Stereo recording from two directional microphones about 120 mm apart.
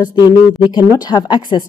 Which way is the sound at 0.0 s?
35° left (ahead or behind).